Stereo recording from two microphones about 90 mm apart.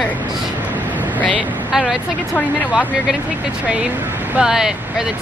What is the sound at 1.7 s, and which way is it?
Speech, 5° right (ahead or behind).